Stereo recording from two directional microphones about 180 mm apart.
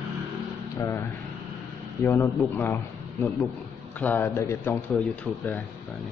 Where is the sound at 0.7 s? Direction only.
15° left (ahead or behind).